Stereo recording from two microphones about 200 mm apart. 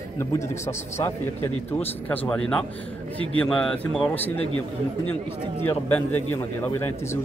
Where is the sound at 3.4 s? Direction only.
5° left (ahead or behind).